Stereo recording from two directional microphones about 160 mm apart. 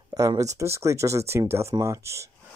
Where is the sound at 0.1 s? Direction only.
20° right (ahead or behind).